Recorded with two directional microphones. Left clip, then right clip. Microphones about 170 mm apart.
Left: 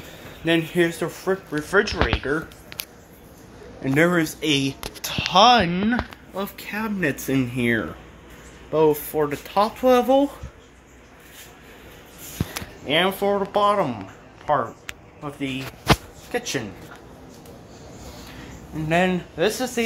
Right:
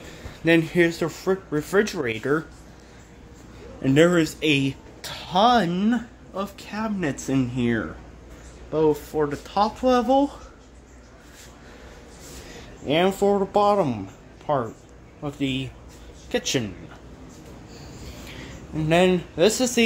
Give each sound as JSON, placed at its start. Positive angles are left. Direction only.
{"t": 0.5, "sound": "speech", "side_deg": -20}
{"t": 3.9, "sound": "speech", "side_deg": -15}
{"t": 5.9, "sound": "speech", "side_deg": 0}
{"t": 12.8, "sound": "speech", "side_deg": -30}
{"t": 18.9, "sound": "speech", "side_deg": -30}